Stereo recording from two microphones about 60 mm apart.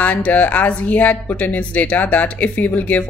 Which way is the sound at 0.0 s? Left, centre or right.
Left.